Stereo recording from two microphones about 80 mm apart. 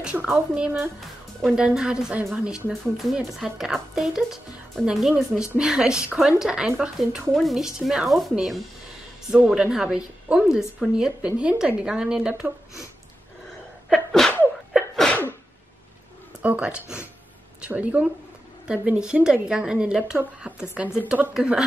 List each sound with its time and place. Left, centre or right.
0.0 s a woman's voice: centre
2.7 s a woman's voice: centre
13.8 s sneeze: centre
16.4 s a woman's voice: centre